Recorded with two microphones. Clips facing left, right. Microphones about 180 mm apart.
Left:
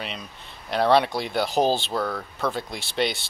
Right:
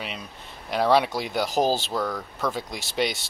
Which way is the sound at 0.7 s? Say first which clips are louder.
Left 1 dB; 10° right (ahead or behind).